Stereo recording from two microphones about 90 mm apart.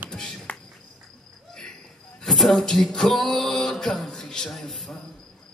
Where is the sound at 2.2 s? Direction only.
Centre (ahead or behind).